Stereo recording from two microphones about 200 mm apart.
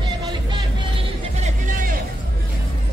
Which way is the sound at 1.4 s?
45° right (ahead or behind).